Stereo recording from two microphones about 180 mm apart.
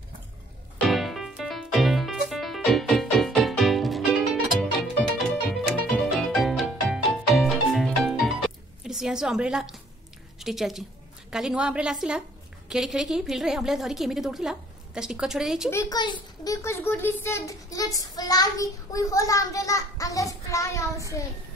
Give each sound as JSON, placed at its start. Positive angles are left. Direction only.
{"t": 0.8, "sound": "music", "side_deg": 0}
{"t": 10.4, "sound": "a woman's voice", "side_deg": 0}
{"t": 15.7, "sound": "a child's voice", "side_deg": 20}